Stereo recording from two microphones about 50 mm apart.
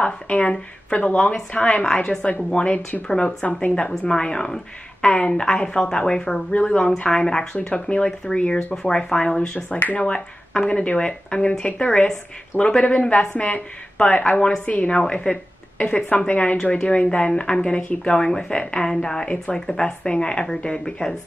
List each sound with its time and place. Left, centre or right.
0.0 s a woman's voice: left
15.0 s a woman's voice: centre